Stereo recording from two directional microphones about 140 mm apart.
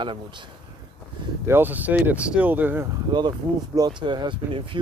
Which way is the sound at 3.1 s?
30° right (ahead or behind).